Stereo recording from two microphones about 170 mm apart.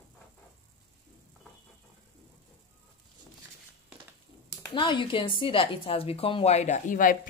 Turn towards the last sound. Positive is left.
turn(degrees=50)  # may be behind; listen again after turning